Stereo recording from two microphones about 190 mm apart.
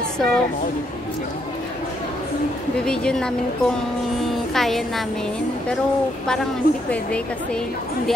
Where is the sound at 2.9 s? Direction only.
5° left (ahead or behind).